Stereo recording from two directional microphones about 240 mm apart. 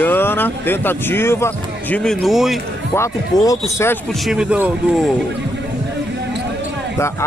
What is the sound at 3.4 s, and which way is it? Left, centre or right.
Speech, centre.